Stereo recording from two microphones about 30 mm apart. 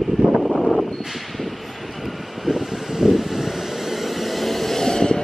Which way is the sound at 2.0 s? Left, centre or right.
Centre.